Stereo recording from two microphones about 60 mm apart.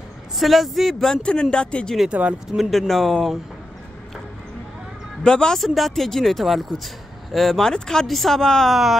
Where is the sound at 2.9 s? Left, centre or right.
Centre.